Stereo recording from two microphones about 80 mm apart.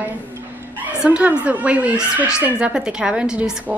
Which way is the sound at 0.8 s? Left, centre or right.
Centre.